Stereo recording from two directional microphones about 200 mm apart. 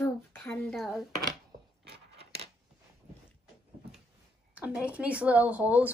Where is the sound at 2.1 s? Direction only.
30° right (ahead or behind).